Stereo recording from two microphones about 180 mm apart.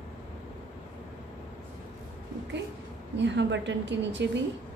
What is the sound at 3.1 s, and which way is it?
A woman's voice, 80° right.